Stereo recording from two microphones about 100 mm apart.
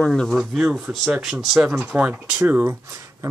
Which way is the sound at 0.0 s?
5° left (ahead or behind).